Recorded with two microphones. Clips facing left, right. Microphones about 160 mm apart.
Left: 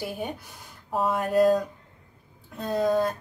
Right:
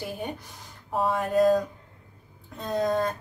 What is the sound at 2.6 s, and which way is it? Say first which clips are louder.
Speech: left 2 dB; 5° left (ahead or behind).